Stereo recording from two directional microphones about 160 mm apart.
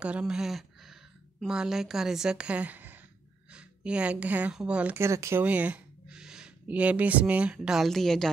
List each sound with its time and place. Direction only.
0.0 s a woman's voice: 5° right (ahead or behind)